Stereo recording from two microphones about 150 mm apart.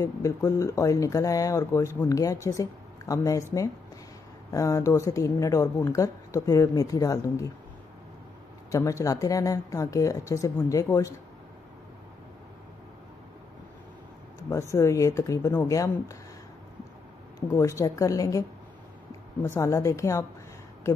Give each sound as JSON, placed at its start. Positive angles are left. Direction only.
{"t": 0.0, "sound": "speech", "side_deg": 20}
{"t": 4.5, "sound": "speech", "side_deg": 20}
{"t": 8.7, "sound": "speech", "side_deg": 20}
{"t": 14.5, "sound": "speech", "side_deg": 20}
{"t": 17.6, "sound": "speech", "side_deg": 20}
{"t": 19.4, "sound": "speech", "side_deg": 20}